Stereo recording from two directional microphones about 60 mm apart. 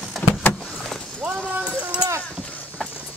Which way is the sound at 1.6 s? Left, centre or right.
Centre.